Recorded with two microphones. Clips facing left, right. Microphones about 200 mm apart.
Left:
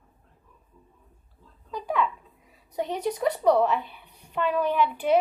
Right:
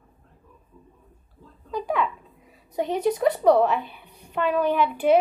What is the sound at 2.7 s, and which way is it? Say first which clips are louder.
A woman's voice: right 5 dB; 10° right (ahead or behind).